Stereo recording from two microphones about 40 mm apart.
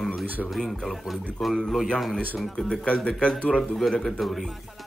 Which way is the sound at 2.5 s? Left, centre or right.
Left.